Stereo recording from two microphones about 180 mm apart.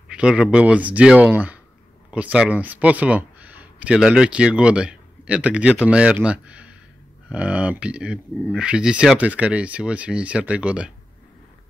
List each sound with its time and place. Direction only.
0.1 s speech: 5° right (ahead or behind)